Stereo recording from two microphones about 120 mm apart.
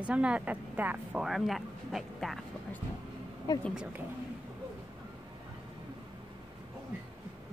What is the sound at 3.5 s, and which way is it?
Speech, 35° left (ahead or behind).